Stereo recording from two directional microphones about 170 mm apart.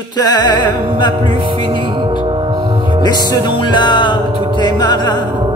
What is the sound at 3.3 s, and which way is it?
Music, 25° left (ahead or behind).